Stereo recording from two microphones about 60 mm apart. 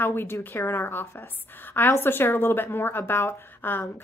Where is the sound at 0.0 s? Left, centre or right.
Left.